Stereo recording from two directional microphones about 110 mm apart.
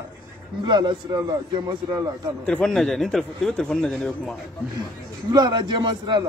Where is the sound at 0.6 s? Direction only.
45° right (ahead or behind).